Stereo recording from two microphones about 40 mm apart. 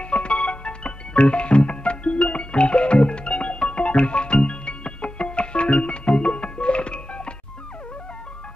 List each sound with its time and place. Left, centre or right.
0.0 s music: left